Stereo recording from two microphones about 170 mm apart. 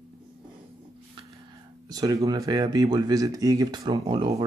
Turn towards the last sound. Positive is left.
turn(degrees=-30)  # may be behind; listen again after turning